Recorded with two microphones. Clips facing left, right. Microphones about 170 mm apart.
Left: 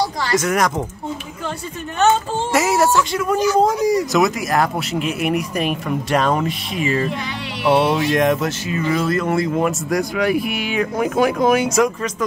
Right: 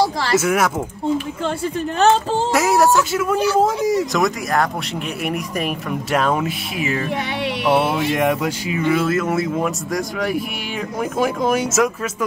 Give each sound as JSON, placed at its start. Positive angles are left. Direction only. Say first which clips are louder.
{"t": 0.0, "sound": "speech", "louder": "right 2 dB", "side_deg": -30}
{"t": 0.4, "sound": "speech", "louder": "left 1 dB", "side_deg": -5}
{"t": 2.5, "sound": "speech", "louder": "even", "side_deg": 0}